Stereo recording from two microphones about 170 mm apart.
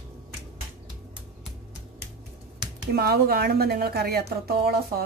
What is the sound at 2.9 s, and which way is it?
A woman's voice, 65° right (ahead or behind).